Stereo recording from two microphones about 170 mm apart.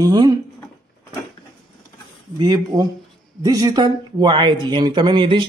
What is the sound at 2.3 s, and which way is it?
Speech, 25° right (ahead or behind).